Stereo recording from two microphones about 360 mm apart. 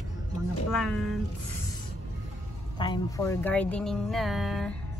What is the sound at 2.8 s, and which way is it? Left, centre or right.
Speech, centre.